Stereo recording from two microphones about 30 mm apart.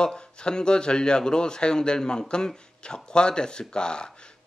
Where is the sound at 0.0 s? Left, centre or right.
Left.